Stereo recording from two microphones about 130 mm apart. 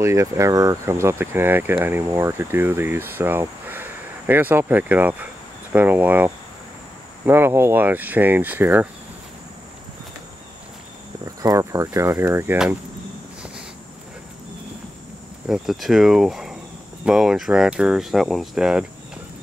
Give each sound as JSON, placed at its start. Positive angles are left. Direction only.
{"t": 0.0, "sound": "speech", "side_deg": -20}
{"t": 11.2, "sound": "speech", "side_deg": -25}
{"t": 15.4, "sound": "speech", "side_deg": 0}